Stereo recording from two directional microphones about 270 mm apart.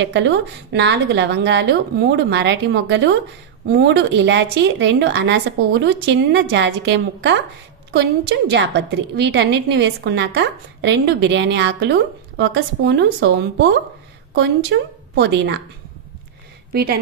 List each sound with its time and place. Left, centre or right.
0.0 s a woman's voice: right
8.5 s a woman's voice: right
16.7 s a woman's voice: right